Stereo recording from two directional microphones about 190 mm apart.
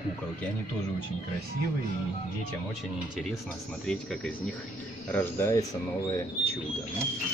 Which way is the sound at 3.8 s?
5° left (ahead or behind).